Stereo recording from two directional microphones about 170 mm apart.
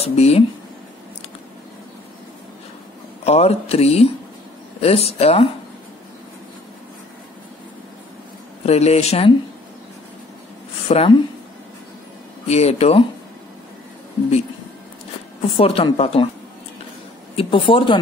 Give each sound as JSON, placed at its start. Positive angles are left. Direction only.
{"t": 0.0, "sound": "speech", "side_deg": 40}
{"t": 3.3, "sound": "speech", "side_deg": 40}
{"t": 8.6, "sound": "speech", "side_deg": 40}
{"t": 10.9, "sound": "speech", "side_deg": 30}
{"t": 12.4, "sound": "speech", "side_deg": 40}
{"t": 15.4, "sound": "speech", "side_deg": 35}
{"t": 17.4, "sound": "speech", "side_deg": 30}